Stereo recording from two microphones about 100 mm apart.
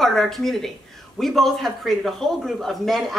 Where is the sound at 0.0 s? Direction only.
5° left (ahead or behind).